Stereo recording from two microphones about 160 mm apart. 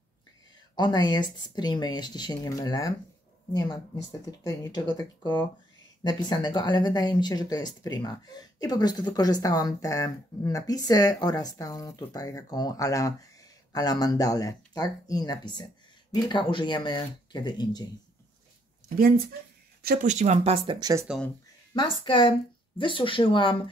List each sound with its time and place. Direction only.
0.7 s speech: 25° left (ahead or behind)
18.9 s speech: 65° right (ahead or behind)
20.1 s speech: 45° right (ahead or behind)
21.7 s speech: 30° left (ahead or behind)